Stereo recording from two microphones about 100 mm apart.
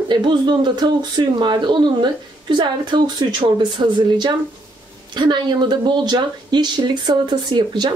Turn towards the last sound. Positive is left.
turn(degrees=-50)  # may be behind; listen again after turning